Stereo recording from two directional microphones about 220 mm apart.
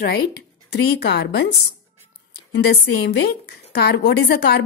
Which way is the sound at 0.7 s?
50° left (ahead or behind).